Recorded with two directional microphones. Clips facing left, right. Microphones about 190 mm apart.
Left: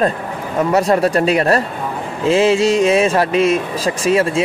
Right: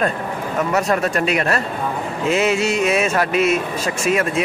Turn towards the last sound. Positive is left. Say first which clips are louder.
# left 4 dB
turn(degrees=30)  # may be behind; listen again after turning